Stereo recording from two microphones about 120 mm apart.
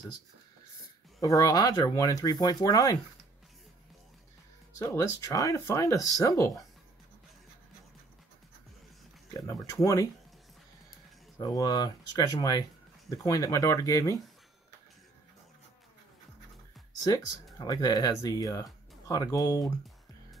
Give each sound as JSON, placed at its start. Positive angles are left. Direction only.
{"t": 1.2, "sound": "speech", "side_deg": 30}
{"t": 4.7, "sound": "speech", "side_deg": 25}
{"t": 9.5, "sound": "speech", "side_deg": 25}
{"t": 11.3, "sound": "speech", "side_deg": 30}
{"t": 17.1, "sound": "speech", "side_deg": 30}